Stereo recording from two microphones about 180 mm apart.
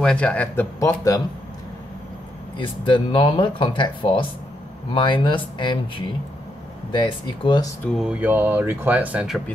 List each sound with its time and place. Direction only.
0.0 s speech: 5° left (ahead or behind)
2.6 s speech: 30° left (ahead or behind)
7.8 s speech: centre (ahead or behind)